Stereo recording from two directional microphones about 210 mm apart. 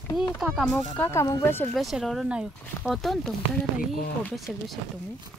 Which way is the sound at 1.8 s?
Centre (ahead or behind).